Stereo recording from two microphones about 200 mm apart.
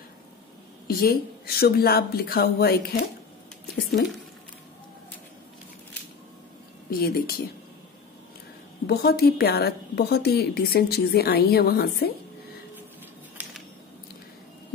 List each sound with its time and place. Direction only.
0.8 s a woman's voice: 50° left (ahead or behind)
6.9 s a woman's voice: 50° left (ahead or behind)
8.8 s a woman's voice: 50° left (ahead or behind)
13.4 s a sound: 5° right (ahead or behind)